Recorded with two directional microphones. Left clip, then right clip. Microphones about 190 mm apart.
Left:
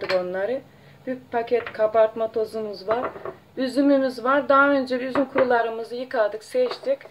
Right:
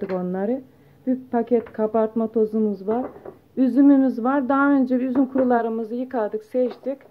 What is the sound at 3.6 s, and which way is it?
Speech, 40° right (ahead or behind).